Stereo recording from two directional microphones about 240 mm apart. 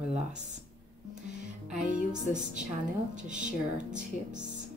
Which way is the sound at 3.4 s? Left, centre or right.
Right.